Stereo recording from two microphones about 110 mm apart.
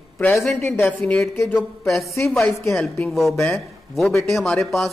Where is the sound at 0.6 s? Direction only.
20° left (ahead or behind).